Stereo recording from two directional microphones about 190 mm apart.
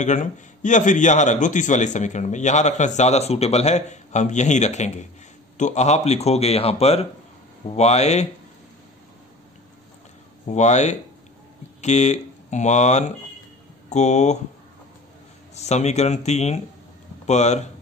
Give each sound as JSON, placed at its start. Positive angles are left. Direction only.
{"t": 0.0, "sound": "a man's voice", "side_deg": 40}
{"t": 10.4, "sound": "a man's voice", "side_deg": 35}
{"t": 15.5, "sound": "a man's voice", "side_deg": 35}